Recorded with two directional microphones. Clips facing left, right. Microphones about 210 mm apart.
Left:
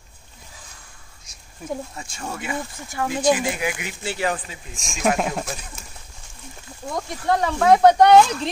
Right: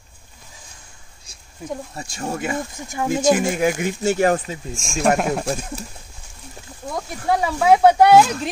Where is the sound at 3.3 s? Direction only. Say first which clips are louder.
Right 3 dB; 45° right (ahead or behind).